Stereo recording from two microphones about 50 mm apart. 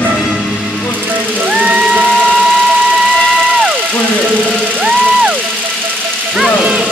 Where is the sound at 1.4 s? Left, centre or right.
Right.